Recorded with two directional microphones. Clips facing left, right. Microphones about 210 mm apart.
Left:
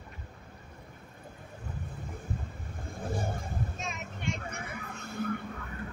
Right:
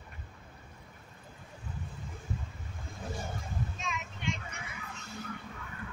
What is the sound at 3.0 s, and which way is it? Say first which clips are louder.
Vehicle: left 5 dB; 50° left (ahead or behind).